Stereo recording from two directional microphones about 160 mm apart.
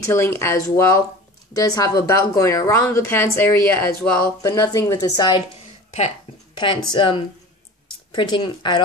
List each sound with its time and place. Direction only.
0.0 s speech: 15° left (ahead or behind)
5.9 s a sound: 40° left (ahead or behind)
6.5 s speech: 30° left (ahead or behind)